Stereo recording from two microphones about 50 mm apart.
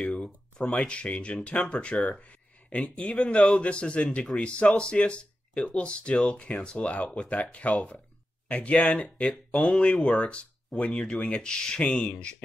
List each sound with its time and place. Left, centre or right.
0.1 s speech: left